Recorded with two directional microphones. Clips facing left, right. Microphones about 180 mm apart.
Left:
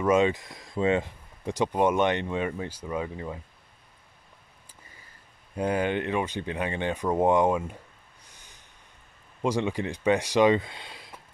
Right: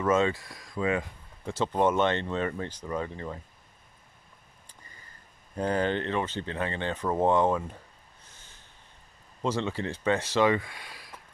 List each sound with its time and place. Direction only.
0.0 s speech: 15° left (ahead or behind)
1.4 s speech: 15° left (ahead or behind)
5.6 s speech: 10° left (ahead or behind)
8.3 s snort: 15° left (ahead or behind)
9.4 s speech: 15° left (ahead or behind)